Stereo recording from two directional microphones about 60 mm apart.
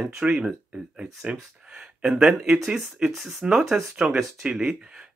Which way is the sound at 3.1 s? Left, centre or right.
Centre.